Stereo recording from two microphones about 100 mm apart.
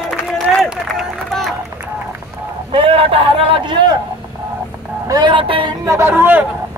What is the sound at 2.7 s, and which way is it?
A man's voice, 65° right (ahead or behind).